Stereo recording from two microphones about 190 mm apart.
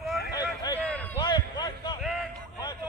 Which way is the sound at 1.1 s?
20° left (ahead or behind).